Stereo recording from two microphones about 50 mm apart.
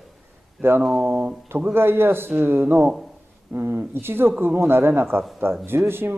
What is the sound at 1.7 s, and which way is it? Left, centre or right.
Speech, right.